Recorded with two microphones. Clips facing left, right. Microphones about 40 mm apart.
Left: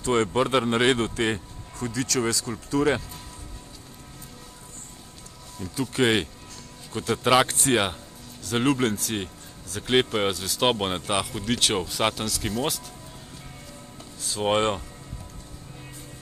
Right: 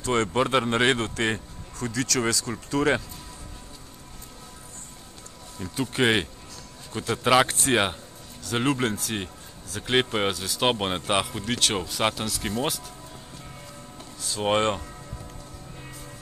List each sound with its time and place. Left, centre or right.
0.0 s speech: centre
0.3 s speech: centre
5.6 s speech: right
6.9 s speech: centre
11.1 s speech: centre
11.3 s speech: centre
14.2 s speech: centre